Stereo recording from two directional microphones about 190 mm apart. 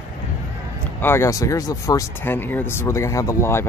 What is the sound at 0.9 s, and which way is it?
Speech, 15° left (ahead or behind).